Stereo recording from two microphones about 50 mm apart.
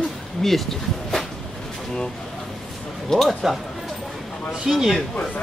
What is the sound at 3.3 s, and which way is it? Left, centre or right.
Speech, centre.